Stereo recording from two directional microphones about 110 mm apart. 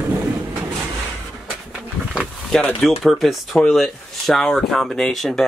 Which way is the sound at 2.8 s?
Centre (ahead or behind).